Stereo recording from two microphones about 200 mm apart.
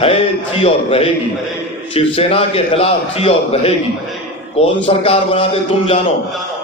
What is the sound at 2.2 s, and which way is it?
A man's voice, 30° left (ahead or behind).